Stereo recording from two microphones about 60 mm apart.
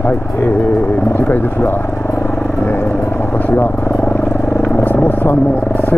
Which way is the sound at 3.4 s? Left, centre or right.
Left.